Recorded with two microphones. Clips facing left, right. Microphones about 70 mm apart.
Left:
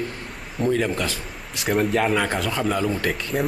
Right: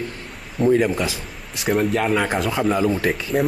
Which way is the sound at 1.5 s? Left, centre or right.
Centre.